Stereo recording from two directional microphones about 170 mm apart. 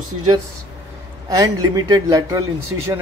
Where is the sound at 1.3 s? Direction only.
25° right (ahead or behind).